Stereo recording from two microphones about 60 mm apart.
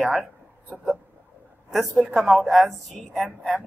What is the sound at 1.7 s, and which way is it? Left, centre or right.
Speech, centre.